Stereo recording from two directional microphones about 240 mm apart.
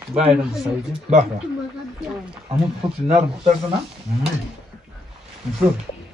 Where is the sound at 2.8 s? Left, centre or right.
Right.